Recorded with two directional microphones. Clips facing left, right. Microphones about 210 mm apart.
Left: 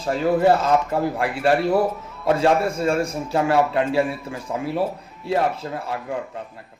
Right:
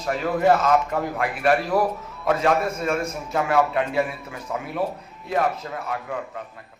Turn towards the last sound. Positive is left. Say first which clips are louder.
# left 2 dB
turn(degrees=30)  # may be behind; listen again after turning